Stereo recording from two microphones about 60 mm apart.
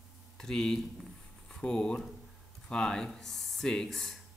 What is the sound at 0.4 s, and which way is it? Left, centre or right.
Speech, centre.